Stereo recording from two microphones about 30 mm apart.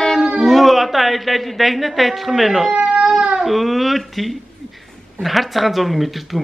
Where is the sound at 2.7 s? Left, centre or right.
Right.